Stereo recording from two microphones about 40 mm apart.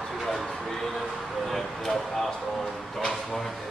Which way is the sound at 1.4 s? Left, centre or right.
Centre.